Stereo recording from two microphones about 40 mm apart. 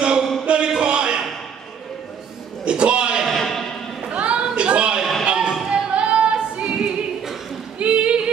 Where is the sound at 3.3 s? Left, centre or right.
Centre.